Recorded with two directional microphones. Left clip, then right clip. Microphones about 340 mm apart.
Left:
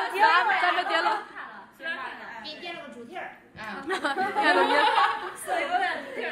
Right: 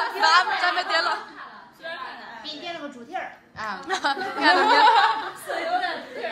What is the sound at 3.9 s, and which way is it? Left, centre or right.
Snicker, centre.